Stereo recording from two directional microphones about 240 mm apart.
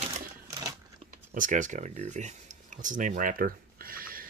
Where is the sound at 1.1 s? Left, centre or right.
Right.